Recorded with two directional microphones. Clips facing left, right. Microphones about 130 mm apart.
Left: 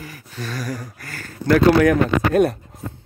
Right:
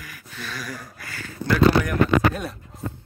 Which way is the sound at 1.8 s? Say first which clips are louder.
Left 3 dB; 65° left (ahead or behind).